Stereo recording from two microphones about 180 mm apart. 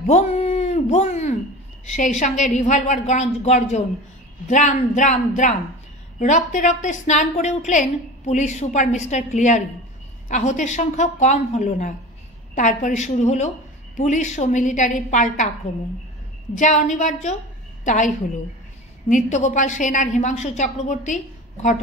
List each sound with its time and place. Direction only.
0.0 s a sound: 40° left (ahead or behind)
1.9 s a woman's voice: 45° left (ahead or behind)
16.5 s a woman's voice: 45° left (ahead or behind)